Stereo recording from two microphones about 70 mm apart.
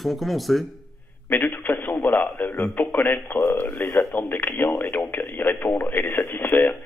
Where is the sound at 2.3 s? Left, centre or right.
Centre.